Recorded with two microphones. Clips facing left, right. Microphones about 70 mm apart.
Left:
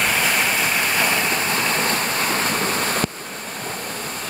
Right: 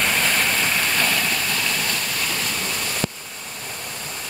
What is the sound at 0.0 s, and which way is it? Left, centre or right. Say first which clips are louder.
Vehicle: left 1 dB; centre.